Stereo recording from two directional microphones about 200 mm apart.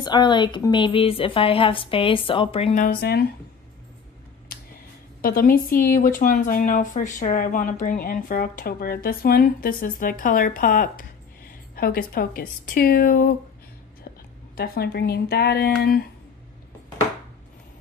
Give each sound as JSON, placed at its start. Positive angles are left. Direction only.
{"t": 0.0, "sound": "speech", "side_deg": 20}
{"t": 5.2, "sound": "speech", "side_deg": 45}
{"t": 14.6, "sound": "speech", "side_deg": 50}